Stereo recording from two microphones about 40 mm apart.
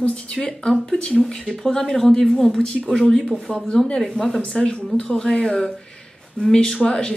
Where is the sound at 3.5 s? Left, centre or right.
Centre.